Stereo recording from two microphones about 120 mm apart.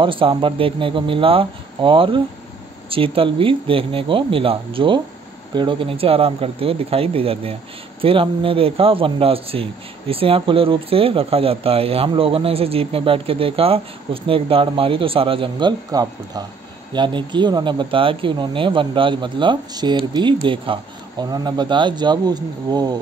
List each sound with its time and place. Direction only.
0.0 s a man's voice: 45° right (ahead or behind)
15.9 s speech: 30° right (ahead or behind)